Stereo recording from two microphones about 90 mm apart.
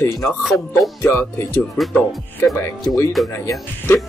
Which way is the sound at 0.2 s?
Centre (ahead or behind).